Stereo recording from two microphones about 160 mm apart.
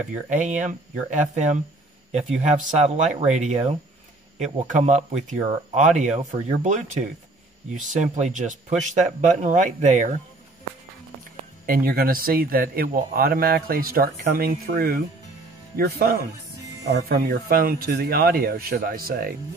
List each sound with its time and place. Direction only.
0.3 s speech: 55° right (ahead or behind)
11.6 s a man's voice: 65° right (ahead or behind)
16.8 s speech: 90° right; by 19.3 s 70° right (ahead or behind)